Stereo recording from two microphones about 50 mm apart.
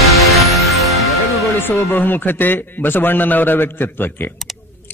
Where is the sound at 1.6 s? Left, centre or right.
Left.